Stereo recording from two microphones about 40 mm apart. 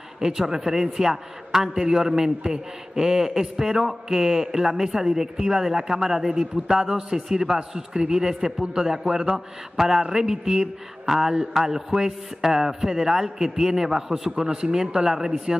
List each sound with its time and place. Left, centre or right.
0.2 s a man's voice: centre
14.3 s a man's voice: centre